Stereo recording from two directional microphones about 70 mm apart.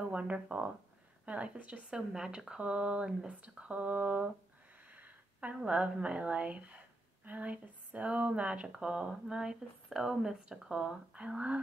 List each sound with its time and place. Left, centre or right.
0.0 s speech: centre
4.9 s a sound: right
5.6 s speech: centre